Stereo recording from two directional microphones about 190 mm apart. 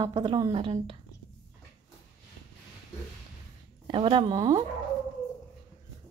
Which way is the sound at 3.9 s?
25° right (ahead or behind).